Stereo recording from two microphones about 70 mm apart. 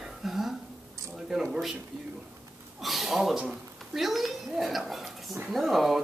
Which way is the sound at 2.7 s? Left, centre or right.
Centre.